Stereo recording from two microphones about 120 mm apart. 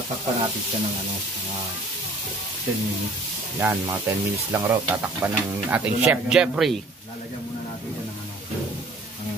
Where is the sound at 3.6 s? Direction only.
20° right (ahead or behind); by 6.8 s 5° right (ahead or behind).